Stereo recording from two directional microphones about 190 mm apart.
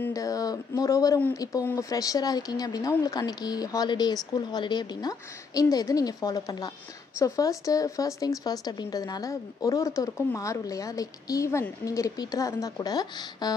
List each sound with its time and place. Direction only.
0.0 s speech: 15° left (ahead or behind)